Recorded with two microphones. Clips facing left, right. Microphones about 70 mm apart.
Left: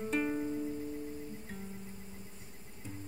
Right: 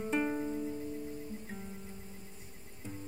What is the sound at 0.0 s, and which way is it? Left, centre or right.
Music, centre.